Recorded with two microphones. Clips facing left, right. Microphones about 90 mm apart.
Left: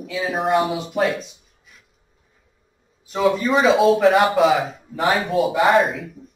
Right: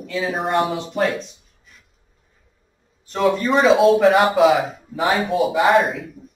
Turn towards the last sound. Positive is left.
turn(degrees=0)  # may be behind; listen again after turning